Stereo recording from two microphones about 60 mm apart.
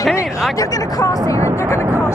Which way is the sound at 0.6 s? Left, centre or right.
Left.